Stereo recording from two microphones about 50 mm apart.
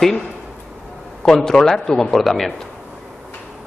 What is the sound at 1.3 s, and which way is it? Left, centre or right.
Speech, centre.